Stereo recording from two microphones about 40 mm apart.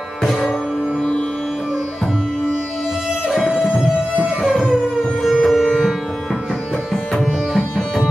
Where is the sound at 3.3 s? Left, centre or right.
Centre.